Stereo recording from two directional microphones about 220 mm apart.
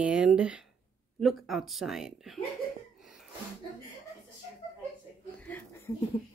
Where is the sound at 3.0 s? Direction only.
Centre (ahead or behind).